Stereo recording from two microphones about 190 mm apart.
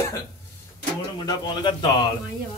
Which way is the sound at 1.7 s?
20° left (ahead or behind).